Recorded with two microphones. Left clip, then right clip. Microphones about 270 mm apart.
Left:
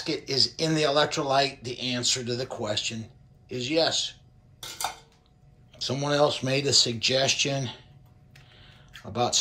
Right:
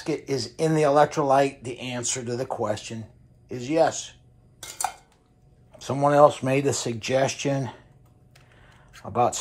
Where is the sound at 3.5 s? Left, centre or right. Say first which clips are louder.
Even; right.